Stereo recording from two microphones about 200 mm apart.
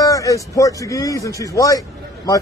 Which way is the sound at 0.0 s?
15° left (ahead or behind).